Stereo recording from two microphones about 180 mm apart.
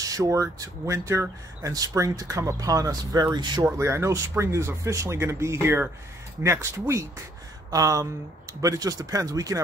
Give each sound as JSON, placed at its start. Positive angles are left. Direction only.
{"t": 0.0, "sound": "speech", "side_deg": -20}